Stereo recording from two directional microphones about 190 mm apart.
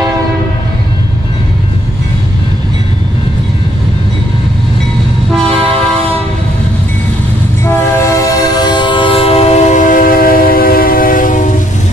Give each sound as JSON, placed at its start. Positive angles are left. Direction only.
{"t": 7.6, "sound": "train", "side_deg": 15}